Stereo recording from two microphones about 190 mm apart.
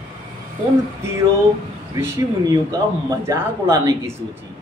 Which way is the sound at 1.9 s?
20° right (ahead or behind).